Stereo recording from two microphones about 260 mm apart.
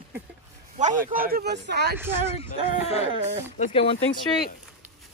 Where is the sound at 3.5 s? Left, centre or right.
Left.